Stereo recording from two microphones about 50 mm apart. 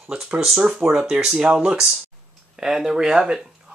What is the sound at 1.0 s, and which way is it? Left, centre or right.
Speech, centre.